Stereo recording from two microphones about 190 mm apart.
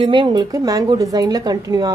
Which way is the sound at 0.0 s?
25° right (ahead or behind).